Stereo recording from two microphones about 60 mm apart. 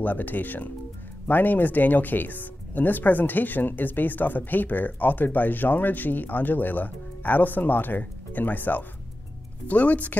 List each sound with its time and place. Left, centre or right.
0.0 s speech: left